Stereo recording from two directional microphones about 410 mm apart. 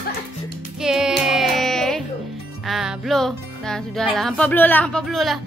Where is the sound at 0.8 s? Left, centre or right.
Centre.